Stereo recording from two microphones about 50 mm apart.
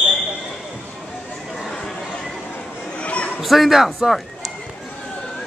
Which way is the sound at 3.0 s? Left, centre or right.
Left.